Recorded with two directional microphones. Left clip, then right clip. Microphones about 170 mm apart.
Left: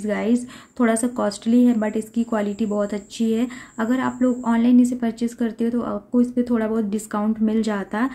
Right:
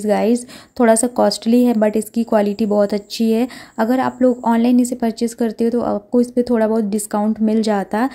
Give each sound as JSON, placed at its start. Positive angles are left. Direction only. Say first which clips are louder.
{"t": 0.0, "sound": "a woman's voice", "louder": "right 7 dB", "side_deg": -40}